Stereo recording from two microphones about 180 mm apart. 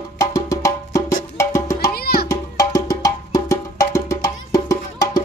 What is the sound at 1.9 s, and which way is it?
Music, 60° left (ahead or behind).